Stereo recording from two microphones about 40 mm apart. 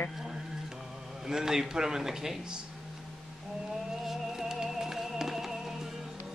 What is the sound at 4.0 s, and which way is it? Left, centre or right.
Music, centre.